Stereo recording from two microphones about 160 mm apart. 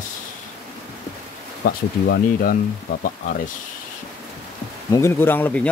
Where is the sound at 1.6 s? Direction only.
85° left.